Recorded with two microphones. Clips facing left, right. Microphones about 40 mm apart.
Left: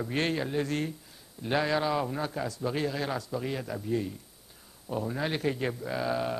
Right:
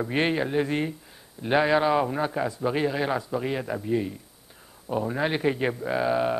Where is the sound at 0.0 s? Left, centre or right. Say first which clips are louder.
Right 5 dB; right.